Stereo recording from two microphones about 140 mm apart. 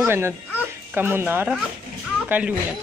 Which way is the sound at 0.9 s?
15° right (ahead or behind).